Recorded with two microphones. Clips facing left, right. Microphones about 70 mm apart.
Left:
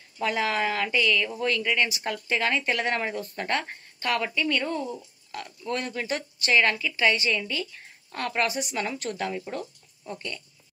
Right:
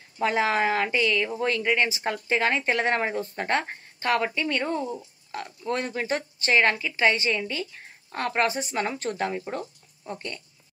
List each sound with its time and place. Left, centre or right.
0.2 s speech: right